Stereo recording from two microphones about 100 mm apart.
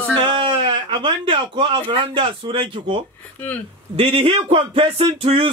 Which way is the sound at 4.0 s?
65° right (ahead or behind).